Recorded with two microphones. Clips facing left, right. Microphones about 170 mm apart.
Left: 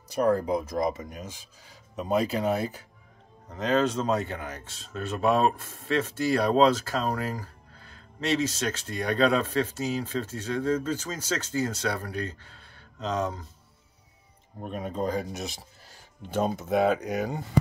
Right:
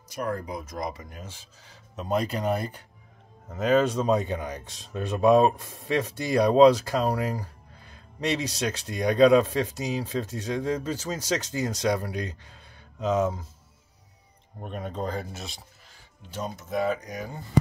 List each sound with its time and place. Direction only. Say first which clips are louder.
0.1 s speech: left 7 dB; 35° left (ahead or behind); by 1.4 s 20° left (ahead or behind)
2.0 s speech: left 1 dB; 5° left (ahead or behind)
3.4 s speech: right 3 dB; 10° right (ahead or behind)
14.6 s speech: left 2 dB; 5° left (ahead or behind)
16.3 s speech: left 7 dB; 60° left (ahead or behind); by 17.5 s 80° left